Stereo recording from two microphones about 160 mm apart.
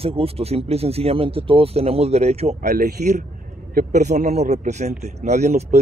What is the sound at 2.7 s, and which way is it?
Speech, 75° right (ahead or behind).